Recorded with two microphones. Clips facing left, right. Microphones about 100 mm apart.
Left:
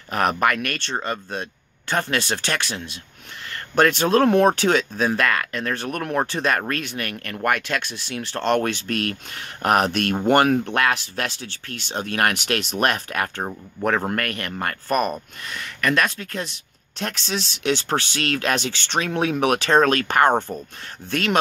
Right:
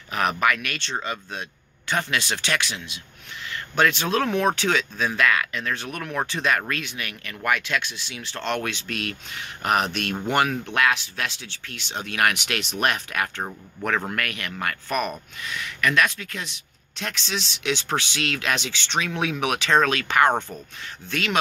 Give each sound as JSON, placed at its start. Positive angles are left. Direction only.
{"t": 0.1, "sound": "speech", "side_deg": 45}
{"t": 13.4, "sound": "speech", "side_deg": 25}
{"t": 13.8, "sound": "speech", "side_deg": 40}